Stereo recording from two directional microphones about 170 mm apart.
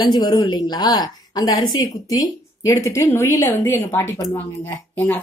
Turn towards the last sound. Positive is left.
turn(degrees=15)  # may be behind; listen again after turning